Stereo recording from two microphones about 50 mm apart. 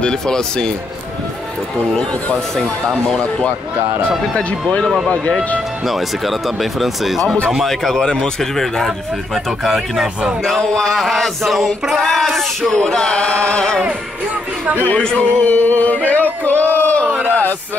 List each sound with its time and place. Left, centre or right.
0.0 s speech: centre
3.1 s speech: centre
5.9 s speech: centre
9.8 s speech: centre
10.6 s speech: centre
10.9 s speech: centre
15.0 s speech: centre
15.4 s yodeling: left
16.1 s music: left
16.6 s a sound: left
17.1 s a sound: right